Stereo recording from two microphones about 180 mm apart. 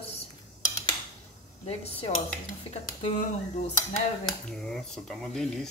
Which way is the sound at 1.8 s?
35° left (ahead or behind).